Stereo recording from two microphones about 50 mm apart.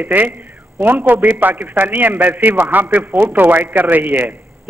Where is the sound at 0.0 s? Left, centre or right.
Right.